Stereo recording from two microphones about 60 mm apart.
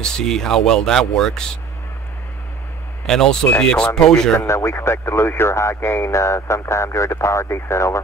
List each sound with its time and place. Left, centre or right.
0.0 s speech: centre
3.1 s speech: centre
4.5 s speech: left